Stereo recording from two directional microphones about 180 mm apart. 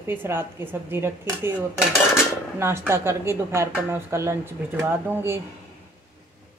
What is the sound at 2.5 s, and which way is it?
Speech, 15° right (ahead or behind).